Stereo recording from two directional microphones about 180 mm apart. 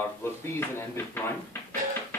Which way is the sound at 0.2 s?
15° left (ahead or behind).